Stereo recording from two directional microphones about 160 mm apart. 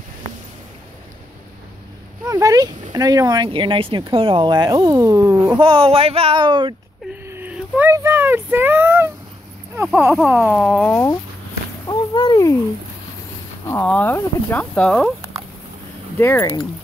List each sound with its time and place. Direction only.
2.2 s speech: 20° right (ahead or behind)
5.6 s speech: 35° right (ahead or behind)
7.2 s a sound: 10° right (ahead or behind)
7.9 s speech: 15° right (ahead or behind)
10.9 s speech: 15° left (ahead or behind)
11.8 s a sound: 25° left (ahead or behind)
13.7 s speech: 10° left (ahead or behind)
16.2 s speech: 15° left (ahead or behind)